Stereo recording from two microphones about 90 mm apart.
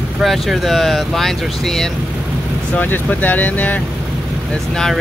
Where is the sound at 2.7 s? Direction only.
20° left (ahead or behind).